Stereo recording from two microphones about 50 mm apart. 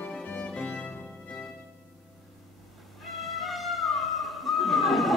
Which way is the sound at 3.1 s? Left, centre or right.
Centre.